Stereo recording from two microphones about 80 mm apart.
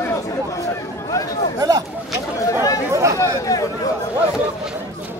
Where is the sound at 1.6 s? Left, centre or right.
Right.